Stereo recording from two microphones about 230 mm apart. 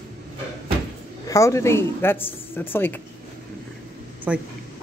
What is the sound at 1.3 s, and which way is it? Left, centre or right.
Speech, centre.